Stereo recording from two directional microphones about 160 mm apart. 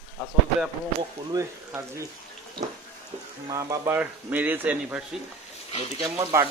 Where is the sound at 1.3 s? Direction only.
20° right (ahead or behind).